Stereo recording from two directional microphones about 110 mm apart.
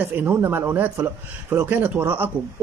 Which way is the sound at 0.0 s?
15° right (ahead or behind).